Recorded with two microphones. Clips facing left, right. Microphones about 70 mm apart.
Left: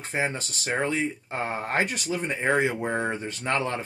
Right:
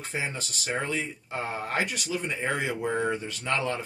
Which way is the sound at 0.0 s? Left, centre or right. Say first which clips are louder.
Left 4 dB; left.